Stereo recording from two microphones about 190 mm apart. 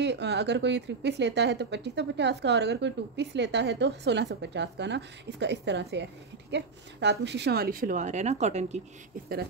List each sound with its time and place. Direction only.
0.0 s speech: 65° right (ahead or behind); by 8.8 s 35° right (ahead or behind)